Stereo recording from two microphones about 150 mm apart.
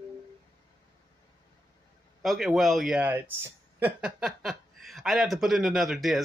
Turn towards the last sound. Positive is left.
turn(degrees=0)  # may be behind; listen again after turning